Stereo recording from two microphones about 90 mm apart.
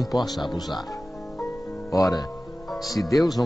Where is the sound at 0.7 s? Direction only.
40° left (ahead or behind).